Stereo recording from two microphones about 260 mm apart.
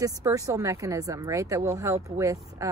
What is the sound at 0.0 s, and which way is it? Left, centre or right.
A woman's voice, centre.